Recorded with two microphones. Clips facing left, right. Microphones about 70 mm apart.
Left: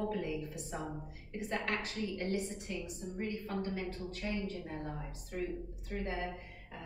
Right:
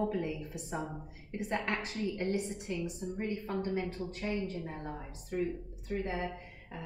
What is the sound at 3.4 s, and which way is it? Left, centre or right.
Speech, right.